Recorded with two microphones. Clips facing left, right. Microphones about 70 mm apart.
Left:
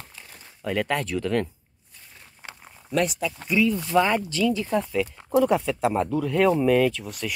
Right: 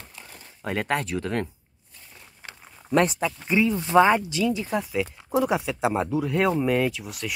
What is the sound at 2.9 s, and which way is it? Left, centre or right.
Speech, right.